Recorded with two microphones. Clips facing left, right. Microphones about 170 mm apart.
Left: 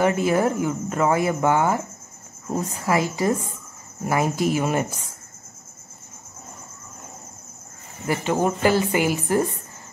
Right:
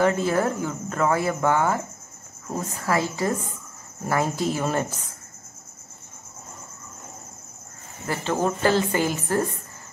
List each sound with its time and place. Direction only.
0.0 s speech: 15° left (ahead or behind)
2.8 s speech: 15° left (ahead or behind)
8.1 s speech: 15° left (ahead or behind)